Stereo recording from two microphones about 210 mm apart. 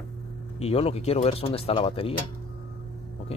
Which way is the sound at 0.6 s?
30° left (ahead or behind).